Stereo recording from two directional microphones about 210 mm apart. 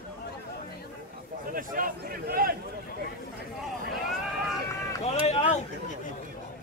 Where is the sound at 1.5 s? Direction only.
40° right (ahead or behind).